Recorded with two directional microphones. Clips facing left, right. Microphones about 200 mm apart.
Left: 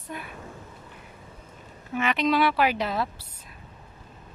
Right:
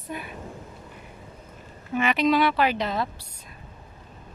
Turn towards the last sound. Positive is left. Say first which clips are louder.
# right 1 dB
turn(degrees=5)  # may be behind; listen again after turning